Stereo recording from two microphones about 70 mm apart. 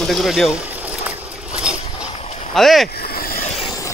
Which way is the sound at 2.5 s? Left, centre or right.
Centre.